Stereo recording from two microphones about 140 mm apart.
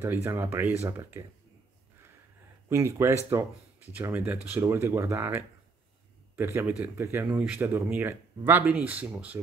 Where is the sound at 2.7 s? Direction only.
20° right (ahead or behind).